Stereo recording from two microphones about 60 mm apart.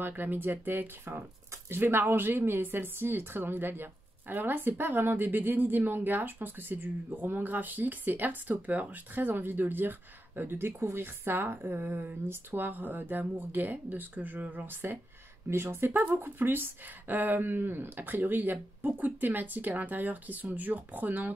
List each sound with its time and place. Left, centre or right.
0.0 s speech: right